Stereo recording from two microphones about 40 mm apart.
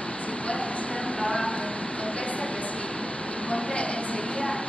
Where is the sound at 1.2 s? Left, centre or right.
Left.